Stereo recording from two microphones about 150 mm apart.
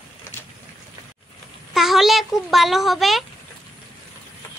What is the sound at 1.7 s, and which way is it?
A child's voice, centre (ahead or behind).